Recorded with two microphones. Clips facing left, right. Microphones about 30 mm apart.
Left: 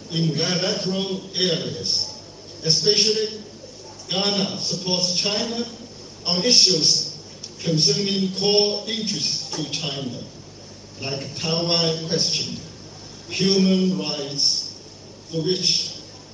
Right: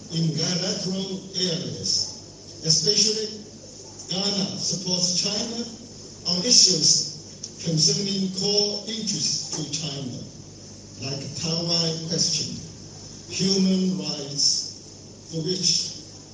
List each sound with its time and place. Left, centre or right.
0.1 s speech: left